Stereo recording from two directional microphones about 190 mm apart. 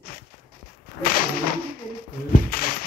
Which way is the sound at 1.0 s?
50° left (ahead or behind).